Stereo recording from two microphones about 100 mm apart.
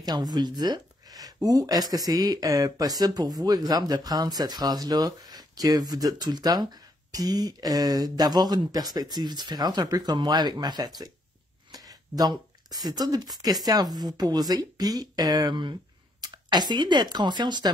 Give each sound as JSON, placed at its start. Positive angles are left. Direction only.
{"t": 0.0, "sound": "speech", "side_deg": -45}
{"t": 11.7, "sound": "a sound", "side_deg": -40}
{"t": 13.7, "sound": "speech", "side_deg": -40}